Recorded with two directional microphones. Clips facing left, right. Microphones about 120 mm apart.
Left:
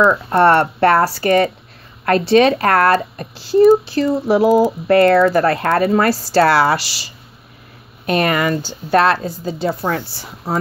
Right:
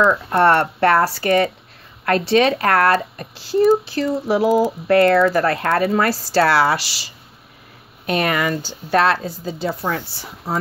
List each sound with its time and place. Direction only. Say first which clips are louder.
0.3 s speech: left 3 dB; 35° left (ahead or behind)
8.1 s a woman's voice: left 3 dB; 50° left (ahead or behind)